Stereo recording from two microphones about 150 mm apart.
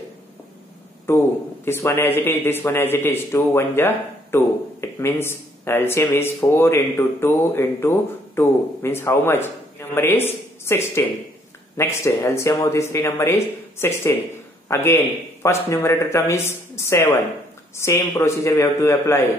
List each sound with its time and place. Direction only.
1.0 s a man's voice: 15° left (ahead or behind)